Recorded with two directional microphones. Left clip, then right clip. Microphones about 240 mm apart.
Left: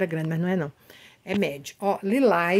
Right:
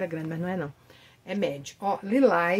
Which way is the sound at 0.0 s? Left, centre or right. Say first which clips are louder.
Left 4 dB; left.